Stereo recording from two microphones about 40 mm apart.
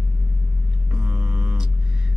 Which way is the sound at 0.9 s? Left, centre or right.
Right.